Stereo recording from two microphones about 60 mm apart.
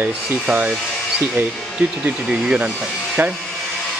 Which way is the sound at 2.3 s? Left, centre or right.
Right.